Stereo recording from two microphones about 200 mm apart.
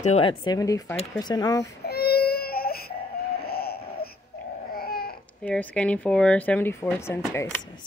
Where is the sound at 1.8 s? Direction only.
50° left (ahead or behind).